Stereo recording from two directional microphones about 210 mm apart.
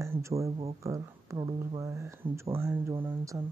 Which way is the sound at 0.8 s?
15° right (ahead or behind).